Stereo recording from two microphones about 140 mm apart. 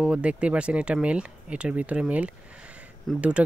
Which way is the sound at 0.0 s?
10° right (ahead or behind).